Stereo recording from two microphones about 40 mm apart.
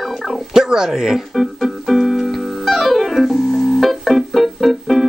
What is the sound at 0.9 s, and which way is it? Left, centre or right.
Speech, centre.